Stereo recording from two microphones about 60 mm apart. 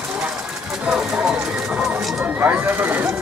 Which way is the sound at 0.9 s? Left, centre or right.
Centre.